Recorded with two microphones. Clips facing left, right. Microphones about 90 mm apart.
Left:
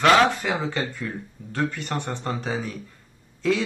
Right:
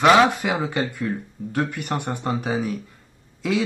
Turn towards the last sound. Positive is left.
turn(degrees=-10)  # may be behind; listen again after turning